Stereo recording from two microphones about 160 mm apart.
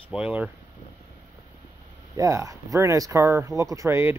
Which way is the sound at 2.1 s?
20° right (ahead or behind).